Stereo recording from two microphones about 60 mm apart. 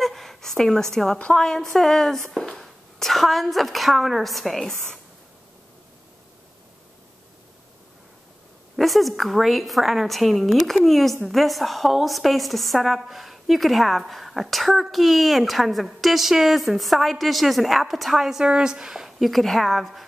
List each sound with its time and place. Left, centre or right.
0.0 s a woman's voice: centre
8.7 s a woman's voice: centre